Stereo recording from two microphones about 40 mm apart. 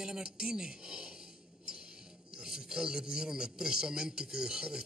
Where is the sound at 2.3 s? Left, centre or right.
Centre.